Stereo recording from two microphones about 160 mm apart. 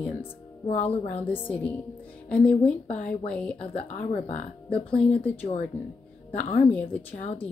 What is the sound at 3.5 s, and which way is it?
Speech, 40° left (ahead or behind).